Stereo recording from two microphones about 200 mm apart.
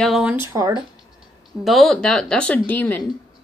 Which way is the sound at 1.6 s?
Centre (ahead or behind).